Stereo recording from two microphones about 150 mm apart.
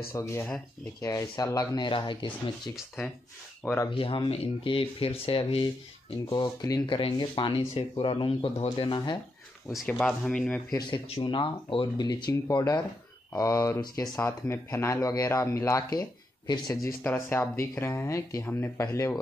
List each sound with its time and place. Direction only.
0.1 s speech: 20° left (ahead or behind)
1.9 s speech: 35° left (ahead or behind)
3.6 s speech: 15° left (ahead or behind)
3.9 s speech: 35° left (ahead or behind)
9.8 s speech: 5° left (ahead or behind)
11.1 s speech: 30° left (ahead or behind)
16.8 s speech: 15° left (ahead or behind)